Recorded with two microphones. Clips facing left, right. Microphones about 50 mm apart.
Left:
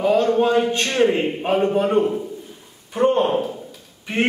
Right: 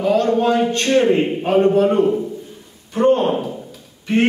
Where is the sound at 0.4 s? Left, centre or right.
Centre.